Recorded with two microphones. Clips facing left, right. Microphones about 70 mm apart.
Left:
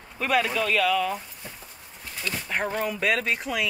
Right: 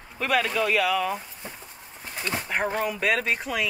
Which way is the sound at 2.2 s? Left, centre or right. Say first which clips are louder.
Right 2 dB; right.